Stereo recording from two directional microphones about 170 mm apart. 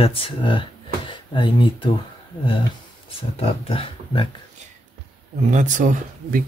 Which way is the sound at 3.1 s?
35° left (ahead or behind).